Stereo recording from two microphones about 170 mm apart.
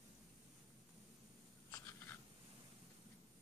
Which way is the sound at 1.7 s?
15° left (ahead or behind).